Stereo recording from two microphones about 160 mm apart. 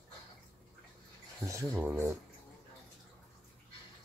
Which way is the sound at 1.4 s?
15° right (ahead or behind).